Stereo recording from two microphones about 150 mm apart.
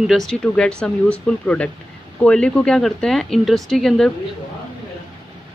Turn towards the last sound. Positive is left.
turn(degrees=0)  # may be behind; listen again after turning